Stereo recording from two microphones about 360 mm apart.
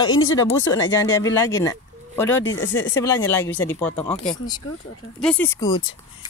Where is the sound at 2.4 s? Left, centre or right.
Left.